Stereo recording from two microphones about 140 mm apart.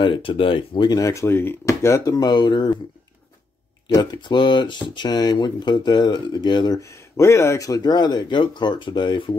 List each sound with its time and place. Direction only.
0.0 s speech: 35° left (ahead or behind)
3.8 s speech: 30° left (ahead or behind)